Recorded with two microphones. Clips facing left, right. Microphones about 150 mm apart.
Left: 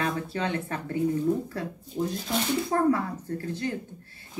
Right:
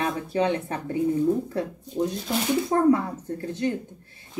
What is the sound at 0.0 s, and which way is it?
Speech, 20° right (ahead or behind).